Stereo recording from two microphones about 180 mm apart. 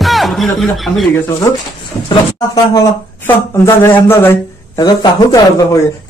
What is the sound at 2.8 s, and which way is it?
A man's voice, 15° left (ahead or behind).